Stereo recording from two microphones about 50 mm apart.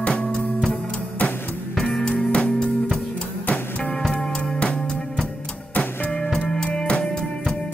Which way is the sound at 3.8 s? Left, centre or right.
Left.